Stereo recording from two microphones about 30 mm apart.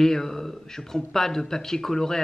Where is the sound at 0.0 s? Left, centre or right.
Centre.